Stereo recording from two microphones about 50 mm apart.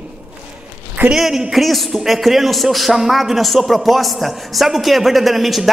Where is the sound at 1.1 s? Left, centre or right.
Centre.